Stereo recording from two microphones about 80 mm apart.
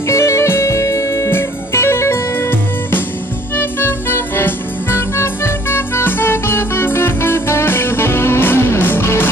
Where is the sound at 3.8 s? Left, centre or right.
Left.